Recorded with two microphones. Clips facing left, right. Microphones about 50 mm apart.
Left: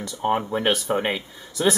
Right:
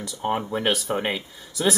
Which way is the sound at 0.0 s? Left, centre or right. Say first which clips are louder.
Left 3 dB; centre.